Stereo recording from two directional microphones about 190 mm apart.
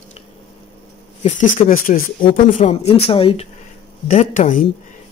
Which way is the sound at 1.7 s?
45° left (ahead or behind).